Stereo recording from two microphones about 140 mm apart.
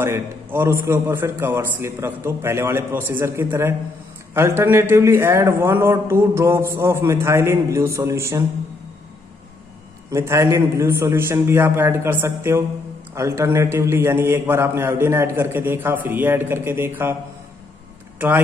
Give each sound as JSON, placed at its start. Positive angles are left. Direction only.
{"t": 0.0, "sound": "a man's voice", "side_deg": -15}
{"t": 10.1, "sound": "a man's voice", "side_deg": -20}